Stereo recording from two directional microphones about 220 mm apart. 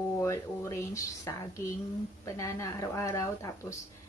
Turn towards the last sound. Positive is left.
turn(degrees=15)  # may be behind; listen again after turning